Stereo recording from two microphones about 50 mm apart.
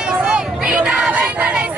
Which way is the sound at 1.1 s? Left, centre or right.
Right.